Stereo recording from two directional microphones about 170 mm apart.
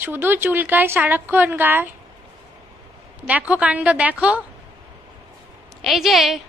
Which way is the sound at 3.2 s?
10° right (ahead or behind).